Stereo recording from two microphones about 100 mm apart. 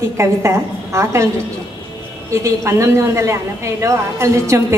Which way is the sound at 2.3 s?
30° right (ahead or behind).